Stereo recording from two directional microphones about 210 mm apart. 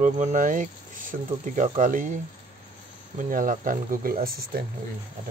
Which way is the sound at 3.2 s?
40° right (ahead or behind).